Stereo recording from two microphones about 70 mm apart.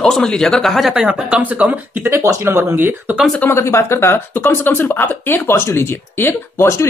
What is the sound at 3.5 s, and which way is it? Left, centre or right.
Speech, left.